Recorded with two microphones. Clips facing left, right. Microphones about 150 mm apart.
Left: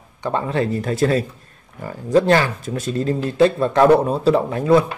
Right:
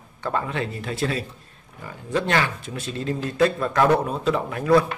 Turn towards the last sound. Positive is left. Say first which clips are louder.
# left 4 dB
turn(degrees=30)  # may be behind; listen again after turning